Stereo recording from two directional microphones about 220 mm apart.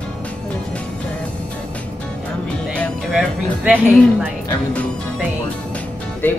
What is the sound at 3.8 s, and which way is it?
Speech, 10° right (ahead or behind).